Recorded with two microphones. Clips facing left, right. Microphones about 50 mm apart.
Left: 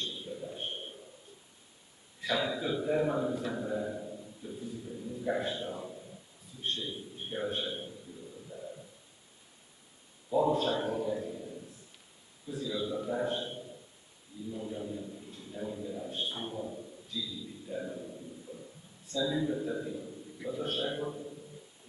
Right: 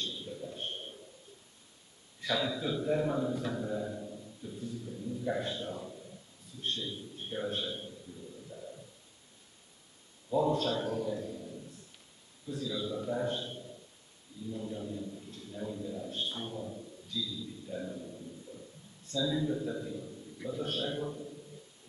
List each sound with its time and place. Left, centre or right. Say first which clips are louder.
0.0 s a sound: left 1 dB; centre
2.1 s a man's voice: left 1 dB; centre
3.5 s a sound: left 1 dB; centre
6.6 s a man's voice: left 1 dB; centre
8.5 s bird: left 3 dB; centre
10.3 s a man's voice: left 1 dB; centre
19.1 s a man's voice: left 1 dB; centre